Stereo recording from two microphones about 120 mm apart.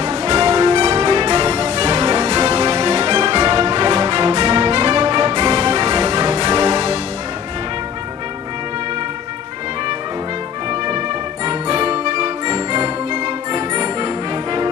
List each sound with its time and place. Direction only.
0.0 s music: 40° right (ahead or behind)
10.7 s music: 45° right (ahead or behind)